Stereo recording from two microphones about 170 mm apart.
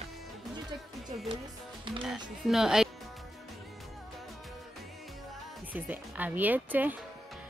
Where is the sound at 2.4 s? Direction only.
5° right (ahead or behind).